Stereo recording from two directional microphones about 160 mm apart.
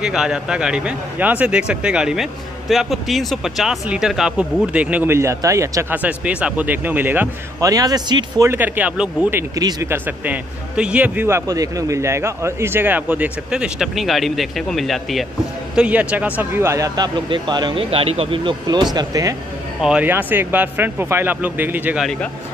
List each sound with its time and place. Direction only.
0.0 s a man's voice: 5° right (ahead or behind)
7.7 s speech: 25° right (ahead or behind)
8.5 s a man's voice: 10° right (ahead or behind)
9.6 s a man's voice: 20° right (ahead or behind)
19.8 s a man's voice: 10° right (ahead or behind)